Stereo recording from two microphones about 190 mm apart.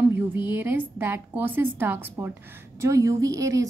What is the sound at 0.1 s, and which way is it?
A woman's voice, 10° right (ahead or behind).